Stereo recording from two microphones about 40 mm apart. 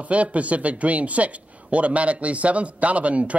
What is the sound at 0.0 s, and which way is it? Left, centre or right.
A man's voice, right.